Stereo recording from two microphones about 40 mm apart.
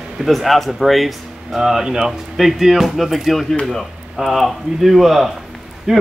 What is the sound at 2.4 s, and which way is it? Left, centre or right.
Speech, centre.